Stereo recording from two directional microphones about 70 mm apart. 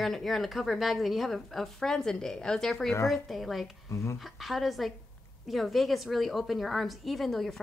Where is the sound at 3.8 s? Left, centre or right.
Left.